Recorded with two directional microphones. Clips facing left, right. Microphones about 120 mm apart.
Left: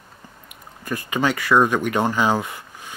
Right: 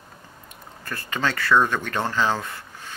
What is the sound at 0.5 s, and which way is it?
Speech, 15° left (ahead or behind).